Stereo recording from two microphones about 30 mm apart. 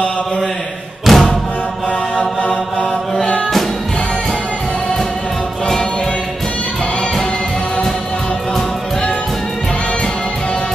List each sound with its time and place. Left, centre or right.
1.1 s music: centre
2.1 s chant: left